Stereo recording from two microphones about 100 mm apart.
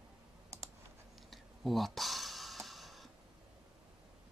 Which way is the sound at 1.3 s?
Centre (ahead or behind).